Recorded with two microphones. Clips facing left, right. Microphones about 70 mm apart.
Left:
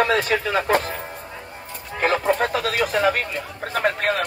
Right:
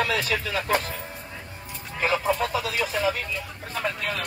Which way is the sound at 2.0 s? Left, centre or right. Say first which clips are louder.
Left 4 dB; left.